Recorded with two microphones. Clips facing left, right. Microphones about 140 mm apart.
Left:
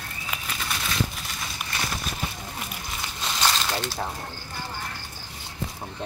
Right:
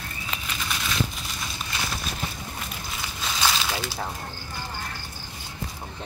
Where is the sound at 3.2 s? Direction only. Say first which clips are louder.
Even; 5° right (ahead or behind).